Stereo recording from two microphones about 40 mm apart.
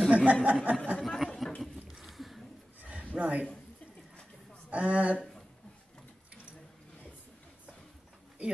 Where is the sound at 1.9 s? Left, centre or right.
Centre.